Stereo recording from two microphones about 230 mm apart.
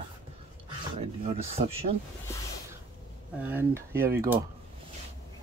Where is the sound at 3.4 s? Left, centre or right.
Centre.